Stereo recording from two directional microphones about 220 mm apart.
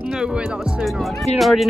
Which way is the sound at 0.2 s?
5° right (ahead or behind).